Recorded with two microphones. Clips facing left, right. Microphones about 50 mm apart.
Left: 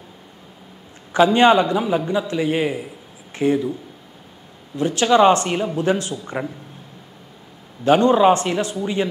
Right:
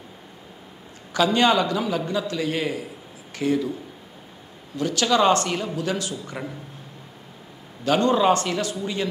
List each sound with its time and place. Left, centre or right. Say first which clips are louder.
1.1 s a man's voice: left 6 dB; left
4.7 s a man's voice: left 5 dB; left
7.8 s a man's voice: left 5 dB; left